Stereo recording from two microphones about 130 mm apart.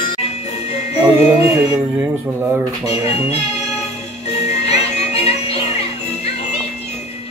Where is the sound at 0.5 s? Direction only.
55° left (ahead or behind).